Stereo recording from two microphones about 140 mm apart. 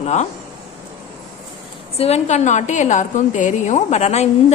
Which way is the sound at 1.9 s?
50° left (ahead or behind).